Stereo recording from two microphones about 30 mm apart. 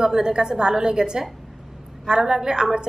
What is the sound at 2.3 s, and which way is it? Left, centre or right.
Speech, right.